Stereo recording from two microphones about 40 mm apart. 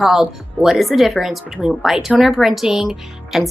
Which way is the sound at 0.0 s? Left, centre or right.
Centre.